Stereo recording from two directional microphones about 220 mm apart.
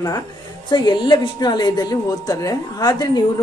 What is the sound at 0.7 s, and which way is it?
Speech, 20° left (ahead or behind).